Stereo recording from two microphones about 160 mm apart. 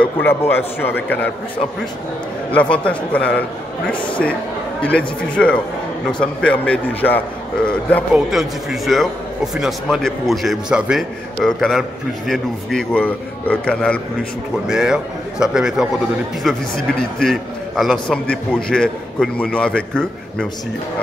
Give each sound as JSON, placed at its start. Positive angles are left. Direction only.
{"t": 0.0, "sound": "a man's voice", "side_deg": 15}
{"t": 2.5, "sound": "a man's voice", "side_deg": 10}
{"t": 3.9, "sound": "speech", "side_deg": 30}
{"t": 4.8, "sound": "a man's voice", "side_deg": 5}
{"t": 8.1, "sound": "a man's voice", "side_deg": 0}